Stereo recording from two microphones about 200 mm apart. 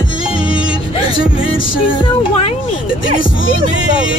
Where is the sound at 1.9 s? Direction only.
25° left (ahead or behind).